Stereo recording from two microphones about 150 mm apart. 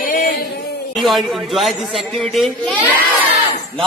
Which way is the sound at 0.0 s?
70° left (ahead or behind).